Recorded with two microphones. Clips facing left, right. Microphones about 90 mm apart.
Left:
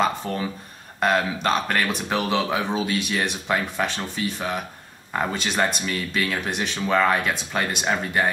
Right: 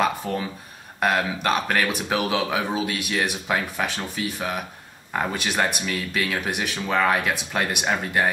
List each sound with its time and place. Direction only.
0.3 s speech: centre (ahead or behind)